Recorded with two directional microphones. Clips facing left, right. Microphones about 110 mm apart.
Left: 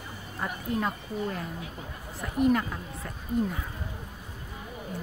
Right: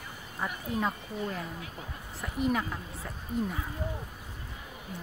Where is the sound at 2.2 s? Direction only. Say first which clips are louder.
Left 5 dB; centre (ahead or behind).